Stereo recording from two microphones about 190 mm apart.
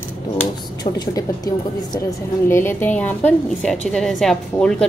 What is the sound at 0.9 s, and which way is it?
A woman's voice, 20° left (ahead or behind).